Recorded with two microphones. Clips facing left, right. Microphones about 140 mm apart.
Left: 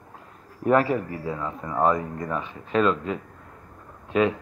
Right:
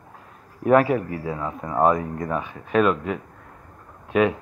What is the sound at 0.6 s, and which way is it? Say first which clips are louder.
A man's voice: right 3 dB; 10° right (ahead or behind).